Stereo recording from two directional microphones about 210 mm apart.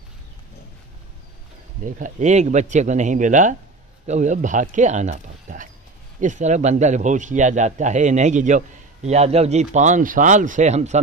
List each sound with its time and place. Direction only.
1.9 s a man's voice: 40° right (ahead or behind)